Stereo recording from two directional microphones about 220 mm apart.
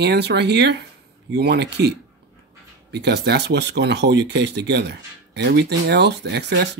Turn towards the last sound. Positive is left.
turn(degrees=-50)  # may be behind; listen again after turning